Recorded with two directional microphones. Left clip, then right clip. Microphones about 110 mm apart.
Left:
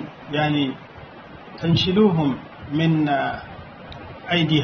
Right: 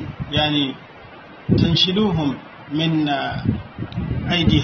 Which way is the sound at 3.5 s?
10° left (ahead or behind).